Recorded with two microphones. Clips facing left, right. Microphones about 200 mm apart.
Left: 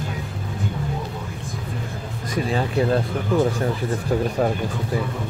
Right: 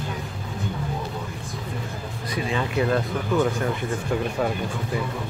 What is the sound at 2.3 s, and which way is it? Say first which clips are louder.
Speech: left 3 dB; 40° left (ahead or behind).